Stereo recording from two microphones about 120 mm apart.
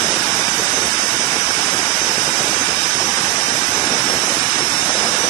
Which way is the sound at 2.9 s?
30° left (ahead or behind).